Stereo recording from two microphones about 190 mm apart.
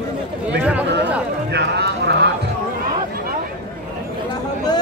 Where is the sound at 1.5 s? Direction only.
65° right (ahead or behind).